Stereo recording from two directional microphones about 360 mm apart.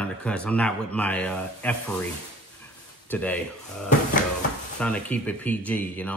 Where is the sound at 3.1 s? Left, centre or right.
Centre.